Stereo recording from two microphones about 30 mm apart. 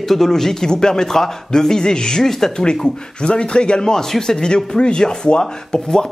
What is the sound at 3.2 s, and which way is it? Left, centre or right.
Speech, left.